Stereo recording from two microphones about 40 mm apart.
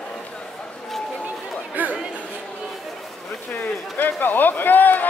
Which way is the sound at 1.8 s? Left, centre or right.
Right.